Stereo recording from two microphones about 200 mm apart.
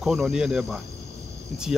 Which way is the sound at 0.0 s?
Centre (ahead or behind).